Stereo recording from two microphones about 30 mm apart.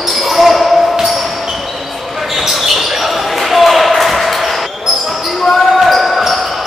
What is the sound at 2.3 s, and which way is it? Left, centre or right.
Basketball bounce, centre.